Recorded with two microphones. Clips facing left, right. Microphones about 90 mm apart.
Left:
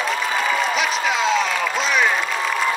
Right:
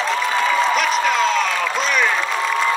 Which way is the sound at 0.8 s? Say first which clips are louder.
Right 3 dB; 5° left (ahead or behind).